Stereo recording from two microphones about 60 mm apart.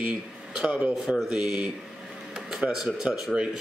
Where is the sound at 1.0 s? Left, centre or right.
Centre.